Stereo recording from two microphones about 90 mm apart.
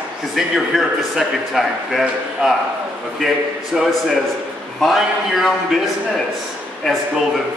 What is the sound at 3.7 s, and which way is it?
A man's voice, 5° right (ahead or behind).